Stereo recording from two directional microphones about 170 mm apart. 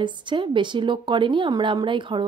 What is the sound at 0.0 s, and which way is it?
A woman's voice, 25° right (ahead or behind).